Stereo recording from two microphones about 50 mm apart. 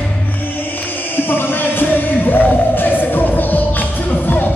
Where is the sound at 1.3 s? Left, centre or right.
Left.